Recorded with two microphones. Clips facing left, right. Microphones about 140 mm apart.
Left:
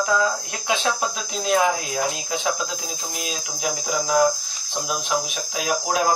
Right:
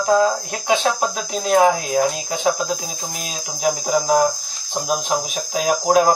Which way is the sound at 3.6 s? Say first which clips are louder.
Right 7 dB; 45° right (ahead or behind).